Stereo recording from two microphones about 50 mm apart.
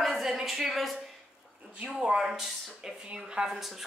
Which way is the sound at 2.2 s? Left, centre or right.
Centre.